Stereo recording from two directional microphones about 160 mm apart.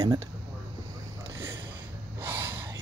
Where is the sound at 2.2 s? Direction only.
10° right (ahead or behind).